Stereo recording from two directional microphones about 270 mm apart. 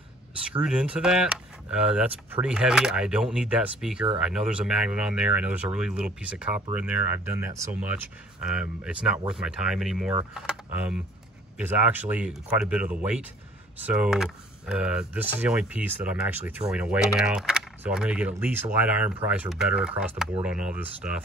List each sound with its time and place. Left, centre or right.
0.6 s speech: centre